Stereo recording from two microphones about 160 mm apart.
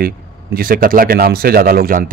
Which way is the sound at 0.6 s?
65° right (ahead or behind).